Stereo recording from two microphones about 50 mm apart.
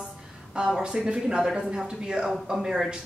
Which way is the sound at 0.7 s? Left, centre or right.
Centre.